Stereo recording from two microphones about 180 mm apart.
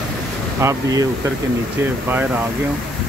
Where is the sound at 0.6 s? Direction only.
20° right (ahead or behind).